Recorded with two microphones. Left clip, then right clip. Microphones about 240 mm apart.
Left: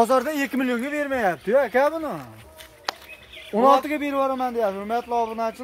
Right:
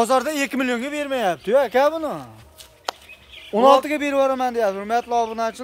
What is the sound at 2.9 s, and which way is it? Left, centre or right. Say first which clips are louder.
Bird: right 1 dB; right.